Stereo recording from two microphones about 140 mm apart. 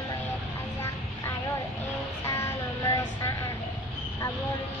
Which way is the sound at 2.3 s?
20° left (ahead or behind).